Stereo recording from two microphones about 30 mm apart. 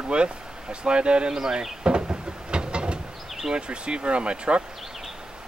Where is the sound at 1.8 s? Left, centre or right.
Right.